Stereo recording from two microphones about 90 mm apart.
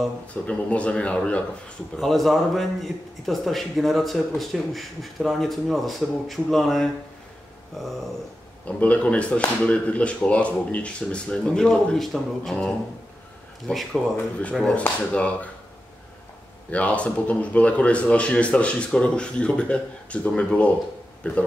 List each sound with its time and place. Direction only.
0.3 s speech: 15° left (ahead or behind)
2.0 s a man's voice: centre (ahead or behind)
8.6 s speech: 15° left (ahead or behind)
13.7 s a man's voice: centre (ahead or behind)
14.8 s speech: 15° left (ahead or behind)
16.7 s speech: 15° left (ahead or behind)